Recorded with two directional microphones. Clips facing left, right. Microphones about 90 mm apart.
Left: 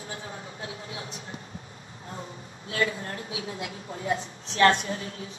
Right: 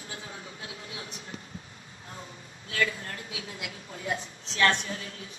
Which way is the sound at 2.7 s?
30° left (ahead or behind).